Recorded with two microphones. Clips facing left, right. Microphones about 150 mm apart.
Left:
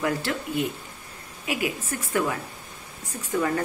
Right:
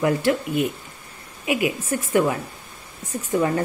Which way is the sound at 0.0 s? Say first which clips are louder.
Right 7 dB; 15° right (ahead or behind).